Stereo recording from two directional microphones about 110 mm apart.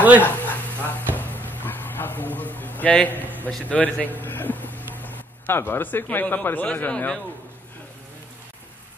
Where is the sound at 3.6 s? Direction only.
15° left (ahead or behind).